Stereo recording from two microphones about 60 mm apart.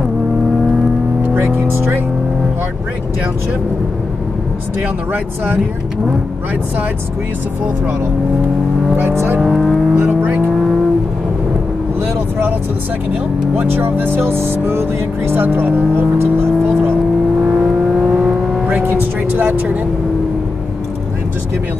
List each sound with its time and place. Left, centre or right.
1.2 s vehicle: right
8.9 s speech: right
9.4 s speech: centre
9.9 s vehicle: right
10.5 s vehicle: centre
13.6 s speech: right
17.5 s vehicle: centre
18.7 s vehicle: right